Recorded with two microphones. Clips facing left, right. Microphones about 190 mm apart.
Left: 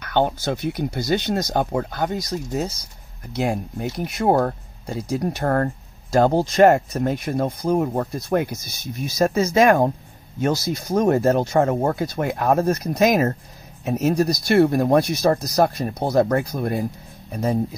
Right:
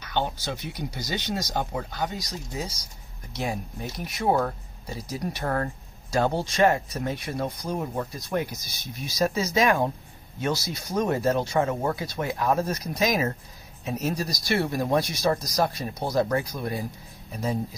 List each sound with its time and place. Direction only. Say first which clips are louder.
0.0 s speech: left 8 dB; 55° left (ahead or behind)